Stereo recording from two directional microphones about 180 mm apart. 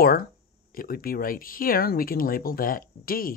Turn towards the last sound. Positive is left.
turn(degrees=55)  # may be behind; listen again after turning